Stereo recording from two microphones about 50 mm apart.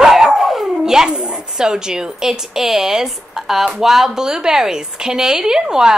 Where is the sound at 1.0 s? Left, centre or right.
Centre.